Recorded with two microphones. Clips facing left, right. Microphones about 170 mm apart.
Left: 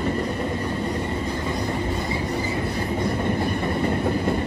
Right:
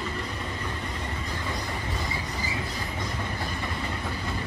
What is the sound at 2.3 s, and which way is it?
Train, 60° left (ahead or behind).